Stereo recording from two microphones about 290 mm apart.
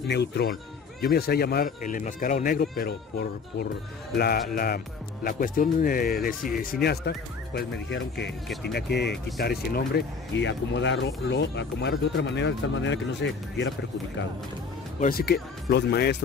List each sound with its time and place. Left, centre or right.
0.1 s speech: left
15.0 s speech: left